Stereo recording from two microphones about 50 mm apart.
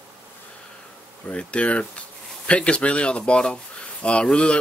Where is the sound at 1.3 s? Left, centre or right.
Left.